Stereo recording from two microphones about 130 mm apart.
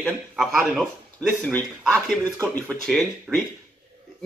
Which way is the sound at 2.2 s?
25° right (ahead or behind).